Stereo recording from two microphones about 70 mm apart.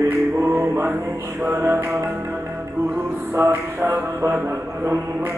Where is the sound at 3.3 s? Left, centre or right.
Right.